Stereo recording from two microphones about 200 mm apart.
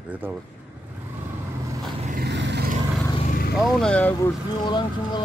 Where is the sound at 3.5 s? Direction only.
Centre (ahead or behind).